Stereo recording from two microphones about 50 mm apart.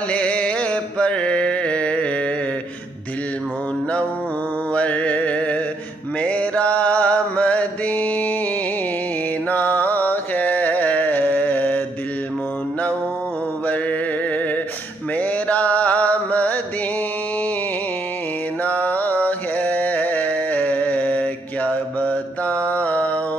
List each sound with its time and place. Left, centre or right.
0.1 s a sound: left
4.7 s music: left
6.2 s mantra: left
9.5 s music: left
15.1 s mantra: left
18.6 s a sound: left
22.7 s mantra: left